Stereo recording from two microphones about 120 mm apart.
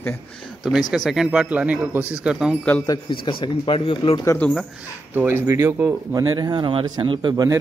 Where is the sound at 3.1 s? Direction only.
45° left (ahead or behind).